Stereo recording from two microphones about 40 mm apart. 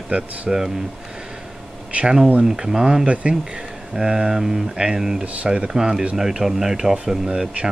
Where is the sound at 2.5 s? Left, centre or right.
Centre.